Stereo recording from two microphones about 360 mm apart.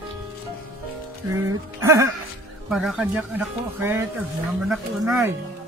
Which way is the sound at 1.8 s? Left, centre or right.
Centre.